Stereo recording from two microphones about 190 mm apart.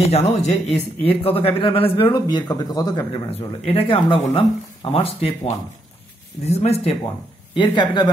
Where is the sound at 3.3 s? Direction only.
30° left (ahead or behind).